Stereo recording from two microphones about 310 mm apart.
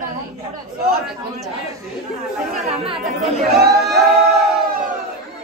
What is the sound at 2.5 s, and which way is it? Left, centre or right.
Speech, right.